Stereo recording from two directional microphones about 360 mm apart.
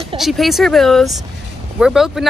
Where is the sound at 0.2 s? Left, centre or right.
Centre.